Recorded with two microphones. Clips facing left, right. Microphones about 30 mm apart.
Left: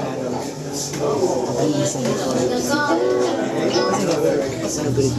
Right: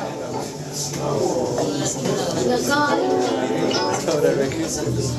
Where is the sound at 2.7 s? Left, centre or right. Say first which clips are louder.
Left 1 dB; centre.